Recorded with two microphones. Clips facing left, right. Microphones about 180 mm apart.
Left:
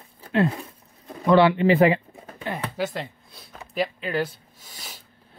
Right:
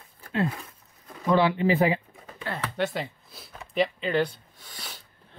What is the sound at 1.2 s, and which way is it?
Speech, 75° left (ahead or behind).